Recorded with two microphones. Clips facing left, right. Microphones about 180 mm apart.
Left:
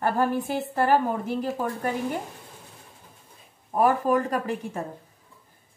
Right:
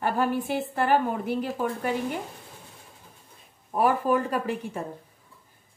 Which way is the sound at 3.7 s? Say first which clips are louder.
Left 1 dB; 40° left (ahead or behind).